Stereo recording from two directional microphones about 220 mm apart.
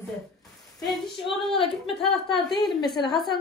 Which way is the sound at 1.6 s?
25° left (ahead or behind).